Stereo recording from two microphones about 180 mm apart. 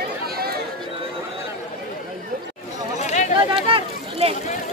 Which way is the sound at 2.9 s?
40° left (ahead or behind).